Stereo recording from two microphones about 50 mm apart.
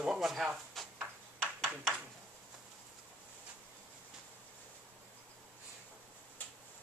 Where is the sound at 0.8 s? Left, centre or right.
Centre.